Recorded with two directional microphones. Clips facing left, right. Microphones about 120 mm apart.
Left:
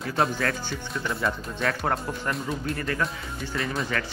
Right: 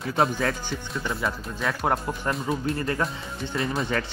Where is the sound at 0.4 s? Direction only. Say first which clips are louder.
Right 1 dB; 20° right (ahead or behind).